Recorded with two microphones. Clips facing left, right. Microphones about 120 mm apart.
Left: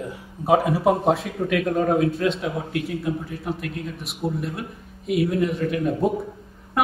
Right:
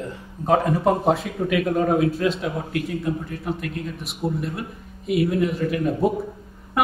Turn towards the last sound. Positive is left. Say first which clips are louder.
# right 1 dB
turn(degrees=0)  # may be behind; listen again after turning